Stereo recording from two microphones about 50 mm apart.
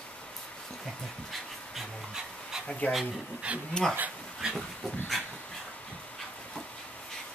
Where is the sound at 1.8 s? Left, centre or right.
Centre.